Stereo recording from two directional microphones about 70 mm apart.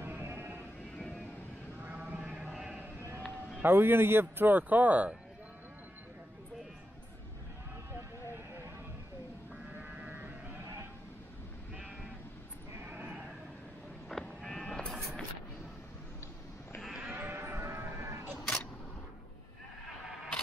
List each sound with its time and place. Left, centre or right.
0.0 s a sound: right
0.9 s vehicle: centre
1.8 s sheep: right
3.6 s speech: right
9.8 s sheep: right
12.9 s sheep: right
14.2 s sheep: centre
16.8 s sheep: centre
17.1 s sheep: right
18.3 s a sound: centre